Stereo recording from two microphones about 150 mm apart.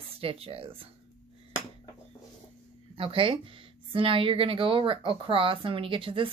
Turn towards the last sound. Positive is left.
turn(degrees=-35)  # may be behind; listen again after turning